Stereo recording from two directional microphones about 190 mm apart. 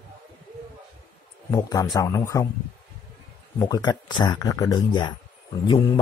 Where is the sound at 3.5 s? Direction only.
20° left (ahead or behind).